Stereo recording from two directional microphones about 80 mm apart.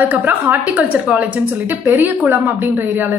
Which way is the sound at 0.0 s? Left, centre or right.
Right.